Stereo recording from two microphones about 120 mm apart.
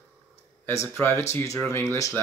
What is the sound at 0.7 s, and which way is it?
Speech, 20° left (ahead or behind).